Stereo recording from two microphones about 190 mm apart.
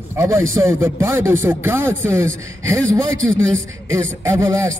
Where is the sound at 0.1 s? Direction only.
15° right (ahead or behind).